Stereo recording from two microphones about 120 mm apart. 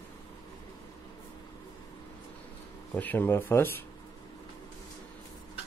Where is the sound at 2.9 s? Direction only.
15° left (ahead or behind).